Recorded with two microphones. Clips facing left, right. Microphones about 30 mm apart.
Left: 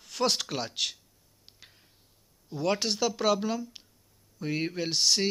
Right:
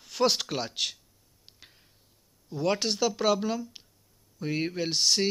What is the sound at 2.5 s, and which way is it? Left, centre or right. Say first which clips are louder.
Speech: right 1 dB; centre.